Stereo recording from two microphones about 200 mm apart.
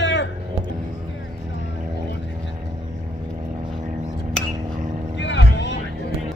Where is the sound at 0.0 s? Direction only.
65° left (ahead or behind).